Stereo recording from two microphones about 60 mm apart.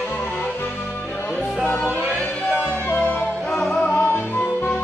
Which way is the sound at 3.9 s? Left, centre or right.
Left.